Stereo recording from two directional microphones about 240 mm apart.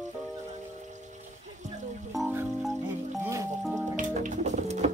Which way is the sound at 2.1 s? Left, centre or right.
Centre.